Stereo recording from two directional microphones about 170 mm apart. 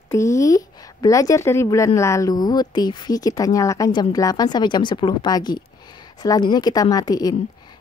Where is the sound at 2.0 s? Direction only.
15° left (ahead or behind).